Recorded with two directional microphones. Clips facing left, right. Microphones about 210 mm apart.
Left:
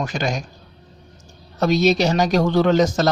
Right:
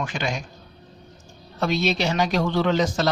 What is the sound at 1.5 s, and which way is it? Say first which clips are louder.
Speech: left 6 dB; 40° left (ahead or behind).